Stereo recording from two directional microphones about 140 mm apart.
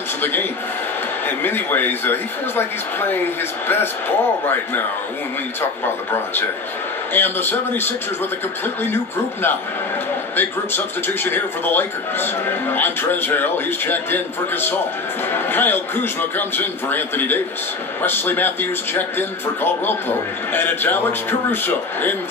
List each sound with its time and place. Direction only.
0.2 s a man's voice: 15° left (ahead or behind)
7.2 s a man's voice: 15° left (ahead or behind)